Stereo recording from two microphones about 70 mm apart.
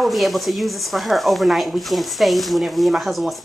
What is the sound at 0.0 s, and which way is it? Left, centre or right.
Speech, centre.